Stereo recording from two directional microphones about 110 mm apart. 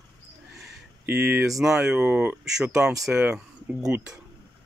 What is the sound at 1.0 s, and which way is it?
Speech, 15° right (ahead or behind).